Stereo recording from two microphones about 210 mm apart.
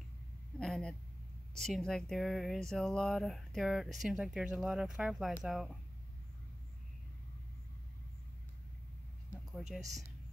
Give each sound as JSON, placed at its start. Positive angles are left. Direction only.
{"t": 0.6, "sound": "a sound", "side_deg": 5}
{"t": 1.6, "sound": "speech", "side_deg": 0}
{"t": 9.6, "sound": "speech", "side_deg": 0}